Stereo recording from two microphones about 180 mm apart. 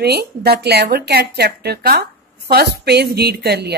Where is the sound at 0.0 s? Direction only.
60° right (ahead or behind).